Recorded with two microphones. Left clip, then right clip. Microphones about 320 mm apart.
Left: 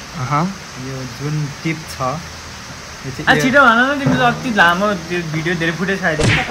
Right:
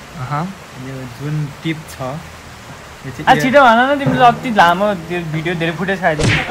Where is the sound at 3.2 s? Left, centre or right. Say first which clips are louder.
Right 2 dB; right.